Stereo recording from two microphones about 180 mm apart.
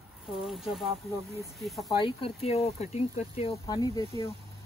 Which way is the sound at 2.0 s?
30° left (ahead or behind).